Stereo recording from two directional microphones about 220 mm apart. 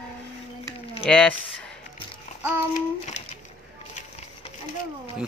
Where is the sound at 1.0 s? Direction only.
5° left (ahead or behind).